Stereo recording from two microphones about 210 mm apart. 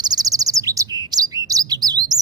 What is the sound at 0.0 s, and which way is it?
Chirp, 20° right (ahead or behind).